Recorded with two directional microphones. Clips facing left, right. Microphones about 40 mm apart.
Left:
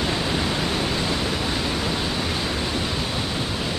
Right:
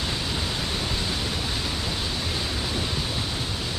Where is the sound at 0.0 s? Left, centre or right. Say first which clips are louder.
Left 5 dB; left.